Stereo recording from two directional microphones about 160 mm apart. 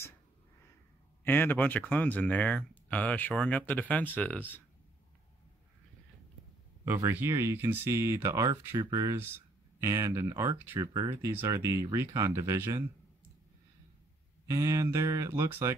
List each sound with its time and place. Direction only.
1.2 s speech: 15° left (ahead or behind)
6.8 s speech: 15° right (ahead or behind)
14.5 s speech: 20° right (ahead or behind)